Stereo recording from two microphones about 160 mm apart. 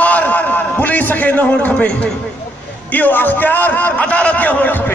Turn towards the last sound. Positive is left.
turn(degrees=10)  # may be behind; listen again after turning